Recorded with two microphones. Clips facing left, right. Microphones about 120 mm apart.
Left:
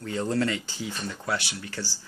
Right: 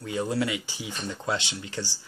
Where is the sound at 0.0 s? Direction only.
15° right (ahead or behind).